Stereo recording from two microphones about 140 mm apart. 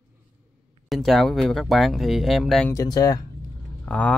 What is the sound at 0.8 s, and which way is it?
Speech, centre (ahead or behind).